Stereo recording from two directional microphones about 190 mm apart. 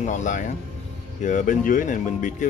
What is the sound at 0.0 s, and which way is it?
Speech, 40° left (ahead or behind).